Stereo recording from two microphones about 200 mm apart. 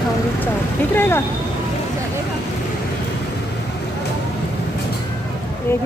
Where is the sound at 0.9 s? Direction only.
10° left (ahead or behind).